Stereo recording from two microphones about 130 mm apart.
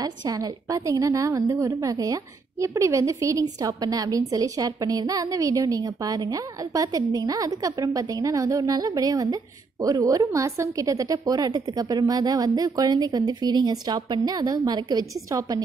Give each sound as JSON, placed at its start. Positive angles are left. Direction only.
{"t": 0.0, "sound": "a woman's voice", "side_deg": -25}